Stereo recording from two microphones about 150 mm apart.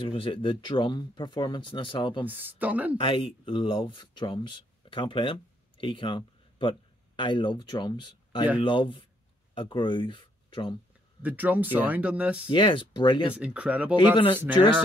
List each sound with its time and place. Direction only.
0.0 s speech: 35° left (ahead or behind)
2.2 s speech: 10° right (ahead or behind)
3.0 s speech: 35° left (ahead or behind)
11.2 s speech: 10° right (ahead or behind)
12.4 s speech: 35° left (ahead or behind)
13.3 s speech: 10° right (ahead or behind)